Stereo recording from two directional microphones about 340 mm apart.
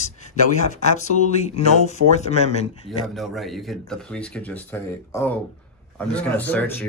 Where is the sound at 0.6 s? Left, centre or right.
Left.